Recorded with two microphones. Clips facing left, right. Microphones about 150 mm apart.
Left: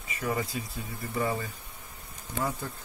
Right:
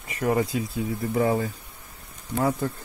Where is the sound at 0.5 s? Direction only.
90° right.